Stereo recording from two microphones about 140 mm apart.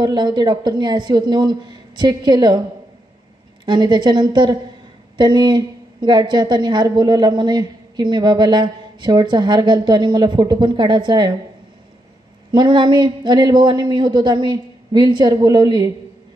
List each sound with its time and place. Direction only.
0.0 s a woman's voice: 35° right (ahead or behind)
3.6 s a woman's voice: 35° right (ahead or behind)
12.4 s a woman's voice: 35° right (ahead or behind)